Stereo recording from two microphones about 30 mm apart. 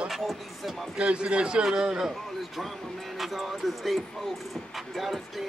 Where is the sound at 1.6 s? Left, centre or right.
Right.